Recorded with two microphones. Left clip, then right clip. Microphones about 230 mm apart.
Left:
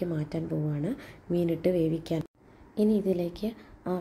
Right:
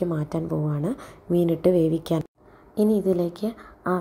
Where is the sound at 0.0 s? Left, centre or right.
Centre.